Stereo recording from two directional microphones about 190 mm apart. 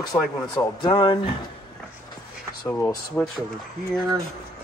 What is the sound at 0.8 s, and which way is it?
Speech, 25° left (ahead or behind).